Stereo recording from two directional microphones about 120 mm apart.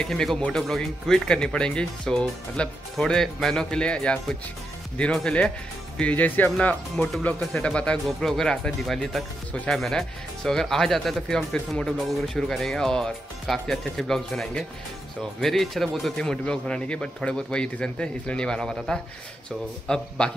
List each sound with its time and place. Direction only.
0.0 s speech: 5° left (ahead or behind)